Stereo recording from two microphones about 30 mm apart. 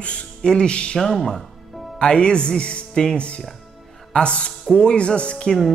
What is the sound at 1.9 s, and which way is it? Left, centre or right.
Speech, left.